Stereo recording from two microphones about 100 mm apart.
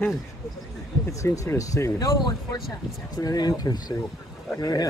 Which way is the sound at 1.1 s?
30° left (ahead or behind).